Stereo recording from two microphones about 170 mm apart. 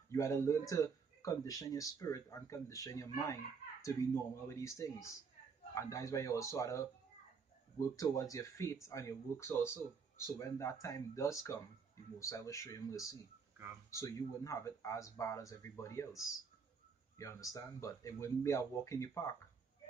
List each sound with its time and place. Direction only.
0.1 s speech: 15° left (ahead or behind)
7.9 s speech: 20° left (ahead or behind)